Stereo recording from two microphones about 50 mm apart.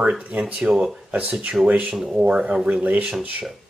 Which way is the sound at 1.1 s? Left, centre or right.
Right.